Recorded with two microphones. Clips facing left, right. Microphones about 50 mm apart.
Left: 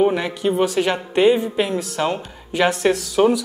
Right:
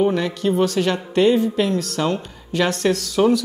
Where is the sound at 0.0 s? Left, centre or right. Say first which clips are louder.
Left 1 dB; centre.